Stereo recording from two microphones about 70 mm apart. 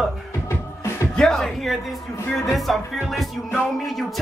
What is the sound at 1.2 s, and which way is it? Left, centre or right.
Speech, centre.